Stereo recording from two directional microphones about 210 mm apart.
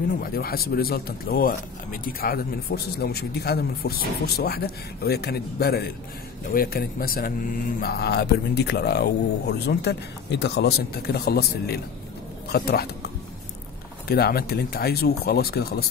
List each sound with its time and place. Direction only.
0.2 s speech: 45° left (ahead or behind)